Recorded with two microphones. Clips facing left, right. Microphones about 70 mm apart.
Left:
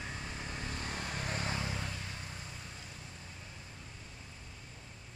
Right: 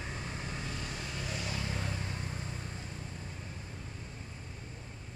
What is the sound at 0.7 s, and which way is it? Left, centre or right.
Vehicle, left.